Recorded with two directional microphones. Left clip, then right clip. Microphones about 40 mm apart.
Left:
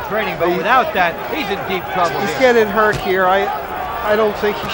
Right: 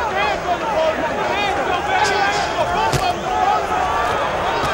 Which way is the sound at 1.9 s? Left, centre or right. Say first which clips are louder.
Even; right.